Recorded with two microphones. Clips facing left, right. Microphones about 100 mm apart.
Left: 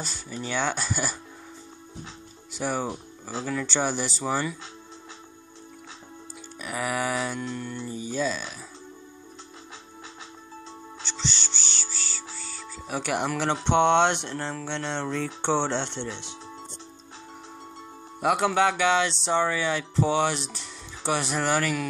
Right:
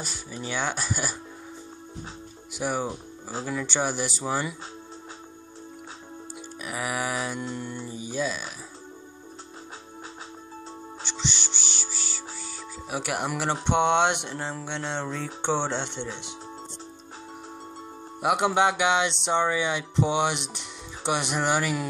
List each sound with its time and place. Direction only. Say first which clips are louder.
0.0 s speech: left 1 dB; 10° right (ahead or behind)
2.5 s speech: even; 10° right (ahead or behind)
6.6 s speech: left 2 dB; 5° right (ahead or behind)
11.1 s music: even; 15° right (ahead or behind)
12.9 s speech: left 2 dB; 5° right (ahead or behind)
18.2 s speech: even; 20° right (ahead or behind)